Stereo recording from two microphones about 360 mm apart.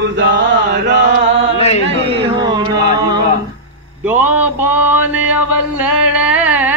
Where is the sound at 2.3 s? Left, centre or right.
Centre.